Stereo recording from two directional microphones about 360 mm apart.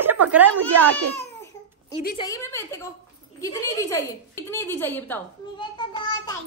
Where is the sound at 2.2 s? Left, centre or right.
Centre.